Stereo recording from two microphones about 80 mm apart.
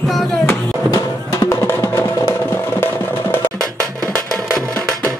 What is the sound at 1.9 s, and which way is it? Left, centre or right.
Music, left.